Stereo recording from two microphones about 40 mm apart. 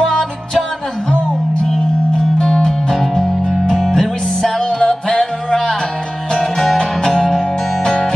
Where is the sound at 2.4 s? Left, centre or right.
Left.